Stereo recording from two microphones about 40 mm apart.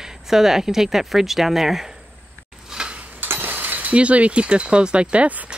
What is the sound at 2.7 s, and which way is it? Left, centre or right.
Tick-tock, centre.